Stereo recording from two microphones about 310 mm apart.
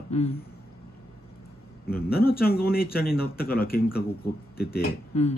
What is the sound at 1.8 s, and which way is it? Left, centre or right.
Speech, left.